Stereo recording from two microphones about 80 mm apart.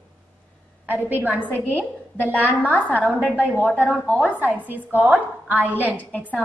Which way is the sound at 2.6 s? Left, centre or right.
Left.